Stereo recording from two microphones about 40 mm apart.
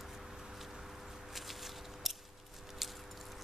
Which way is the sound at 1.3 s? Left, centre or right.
Centre.